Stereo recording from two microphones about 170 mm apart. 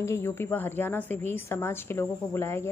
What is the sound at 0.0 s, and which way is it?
A woman's voice, 15° left (ahead or behind).